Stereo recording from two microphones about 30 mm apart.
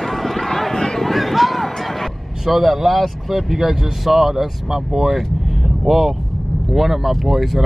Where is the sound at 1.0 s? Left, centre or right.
Centre.